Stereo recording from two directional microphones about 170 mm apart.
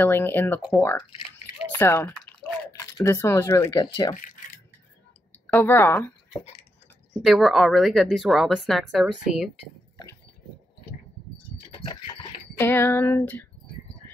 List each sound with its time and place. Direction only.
0.0 s speech: 10° left (ahead or behind)
1.7 s speech: 15° left (ahead or behind)
5.5 s speech: 10° left (ahead or behind)
7.2 s speech: centre (ahead or behind)
12.5 s speech: 15° left (ahead or behind)